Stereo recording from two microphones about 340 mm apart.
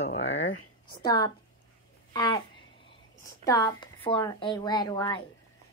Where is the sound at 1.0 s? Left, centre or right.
Centre.